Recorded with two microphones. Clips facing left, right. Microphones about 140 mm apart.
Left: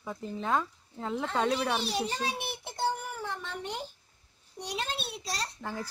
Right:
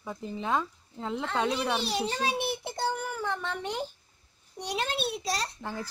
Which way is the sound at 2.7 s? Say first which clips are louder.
Left 3 dB; 90° right.